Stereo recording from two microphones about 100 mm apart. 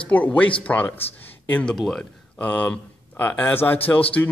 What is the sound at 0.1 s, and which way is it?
Speech, 15° left (ahead or behind).